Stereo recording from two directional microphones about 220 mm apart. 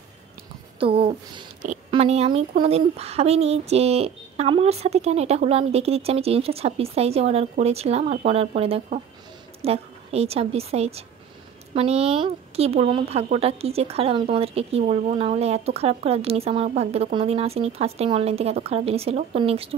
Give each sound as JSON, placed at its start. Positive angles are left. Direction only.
{"t": 0.7, "sound": "speech", "side_deg": -25}